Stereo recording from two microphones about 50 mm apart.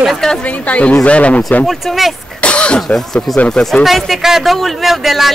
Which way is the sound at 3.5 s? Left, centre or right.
Centre.